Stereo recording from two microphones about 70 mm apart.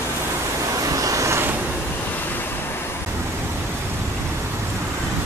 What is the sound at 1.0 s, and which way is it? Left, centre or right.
Vehicle, right.